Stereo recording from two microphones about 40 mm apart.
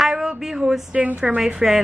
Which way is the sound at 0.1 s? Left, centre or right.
Centre.